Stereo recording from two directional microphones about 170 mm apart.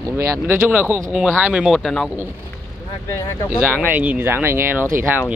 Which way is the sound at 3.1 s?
15° left (ahead or behind).